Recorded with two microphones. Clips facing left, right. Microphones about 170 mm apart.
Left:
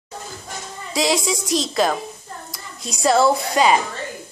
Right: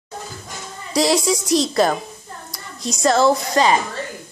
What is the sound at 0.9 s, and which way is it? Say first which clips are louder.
A woman's voice: right 3 dB; centre (ahead or behind).